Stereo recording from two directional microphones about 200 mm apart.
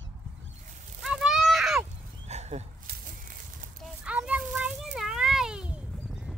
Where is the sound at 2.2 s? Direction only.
35° right (ahead or behind).